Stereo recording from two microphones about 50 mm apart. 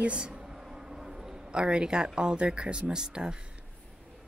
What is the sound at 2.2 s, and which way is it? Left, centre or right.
Speech, centre.